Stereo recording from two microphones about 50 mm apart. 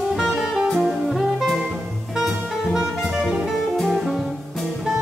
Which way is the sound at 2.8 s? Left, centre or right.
Centre.